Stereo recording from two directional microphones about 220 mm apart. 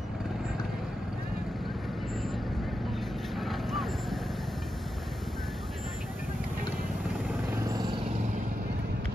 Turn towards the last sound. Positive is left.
turn(degrees=-20)  # may be behind; listen again after turning